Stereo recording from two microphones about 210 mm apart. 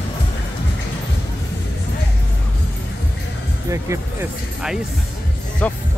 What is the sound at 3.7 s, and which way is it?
Speech, 15° right (ahead or behind).